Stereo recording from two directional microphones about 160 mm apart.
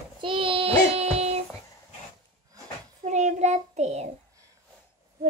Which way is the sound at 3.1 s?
45° right (ahead or behind).